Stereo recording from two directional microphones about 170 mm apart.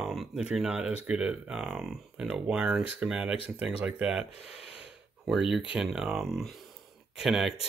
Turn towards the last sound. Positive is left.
turn(degrees=0)  # may be behind; listen again after turning